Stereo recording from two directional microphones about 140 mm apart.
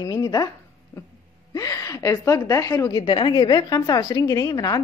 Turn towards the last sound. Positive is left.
turn(degrees=25)  # may be behind; listen again after turning